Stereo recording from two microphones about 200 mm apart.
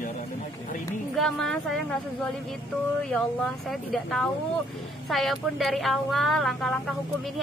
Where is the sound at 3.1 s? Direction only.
Centre (ahead or behind).